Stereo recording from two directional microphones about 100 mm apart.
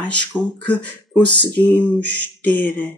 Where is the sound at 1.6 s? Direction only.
15° left (ahead or behind).